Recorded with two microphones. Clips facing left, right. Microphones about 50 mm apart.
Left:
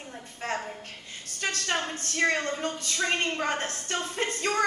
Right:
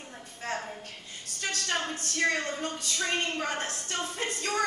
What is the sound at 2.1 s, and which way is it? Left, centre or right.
A woman's voice, left.